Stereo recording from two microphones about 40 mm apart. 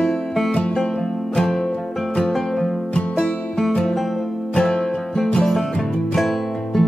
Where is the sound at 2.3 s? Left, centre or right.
Centre.